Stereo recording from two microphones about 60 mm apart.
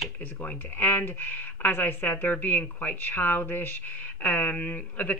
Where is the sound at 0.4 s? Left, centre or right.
Left.